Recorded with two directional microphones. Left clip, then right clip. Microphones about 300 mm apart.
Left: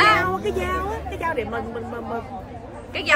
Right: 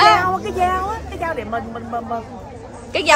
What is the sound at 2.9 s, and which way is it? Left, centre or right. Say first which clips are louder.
Speech: right 7 dB; centre.